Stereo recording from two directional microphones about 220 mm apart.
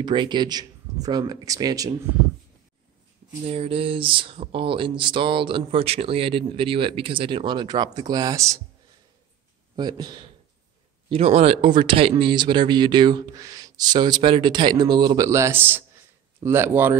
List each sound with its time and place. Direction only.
0.0 s speech: 20° right (ahead or behind)
3.4 s speech: 25° right (ahead or behind)
9.8 s speech: 20° right (ahead or behind)